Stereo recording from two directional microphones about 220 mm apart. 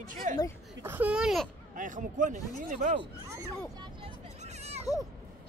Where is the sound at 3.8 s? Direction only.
25° right (ahead or behind).